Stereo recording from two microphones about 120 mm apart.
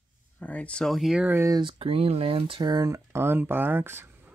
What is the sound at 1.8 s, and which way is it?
Speech, 50° right (ahead or behind).